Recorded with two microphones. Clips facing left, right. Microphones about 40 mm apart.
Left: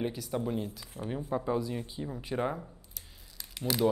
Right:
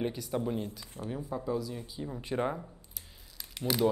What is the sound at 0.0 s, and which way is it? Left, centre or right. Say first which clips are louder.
Speech: even; centre.